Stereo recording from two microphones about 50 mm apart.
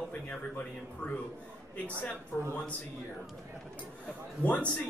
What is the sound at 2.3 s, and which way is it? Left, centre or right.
Speech, left.